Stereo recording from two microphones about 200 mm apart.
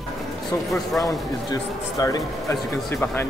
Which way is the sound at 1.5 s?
20° left (ahead or behind).